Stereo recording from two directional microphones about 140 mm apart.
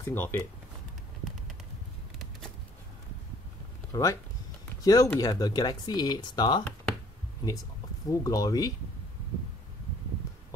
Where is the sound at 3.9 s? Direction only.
25° left (ahead or behind).